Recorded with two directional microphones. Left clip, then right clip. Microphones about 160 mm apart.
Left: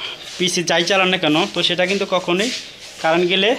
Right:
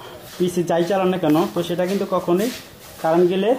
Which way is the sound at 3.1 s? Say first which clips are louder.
Left 1 dB; 5° left (ahead or behind).